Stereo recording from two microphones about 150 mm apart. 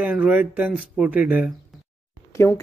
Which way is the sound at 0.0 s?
10° right (ahead or behind).